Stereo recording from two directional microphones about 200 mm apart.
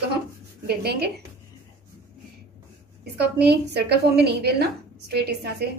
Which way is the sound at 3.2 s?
55° right (ahead or behind).